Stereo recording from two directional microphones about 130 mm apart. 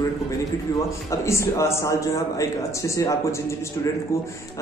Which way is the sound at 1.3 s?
20° left (ahead or behind).